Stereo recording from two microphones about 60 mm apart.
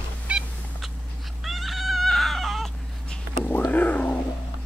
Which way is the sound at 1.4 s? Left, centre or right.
Centre.